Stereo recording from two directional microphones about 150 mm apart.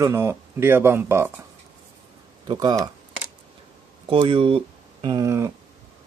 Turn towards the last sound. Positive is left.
turn(degrees=-20)  # may be behind; listen again after turning